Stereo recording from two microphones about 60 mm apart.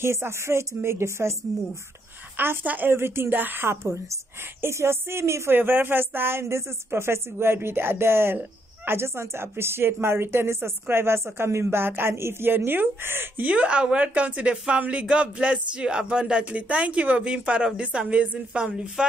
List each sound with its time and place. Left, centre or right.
0.0 s speech: right
2.3 s speech: right
2.6 s speech: right
2.9 s a woman's voice: right
5.5 s a woman's voice: right
13.4 s speech: right